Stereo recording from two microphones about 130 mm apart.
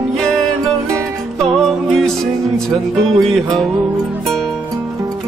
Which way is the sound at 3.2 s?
Centre (ahead or behind).